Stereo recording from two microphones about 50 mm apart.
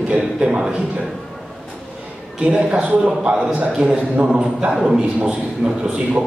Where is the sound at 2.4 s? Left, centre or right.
Centre.